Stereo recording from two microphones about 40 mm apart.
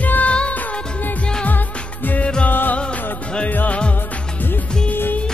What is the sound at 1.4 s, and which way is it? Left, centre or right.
Music, left.